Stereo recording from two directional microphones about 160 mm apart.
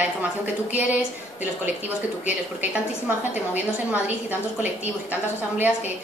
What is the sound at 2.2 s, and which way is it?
A woman's voice, 10° right (ahead or behind).